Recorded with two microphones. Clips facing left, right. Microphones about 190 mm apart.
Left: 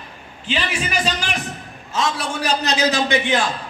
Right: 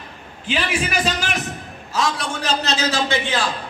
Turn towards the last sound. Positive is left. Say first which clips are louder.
# left 2 dB
turn(degrees=20)  # may be behind; listen again after turning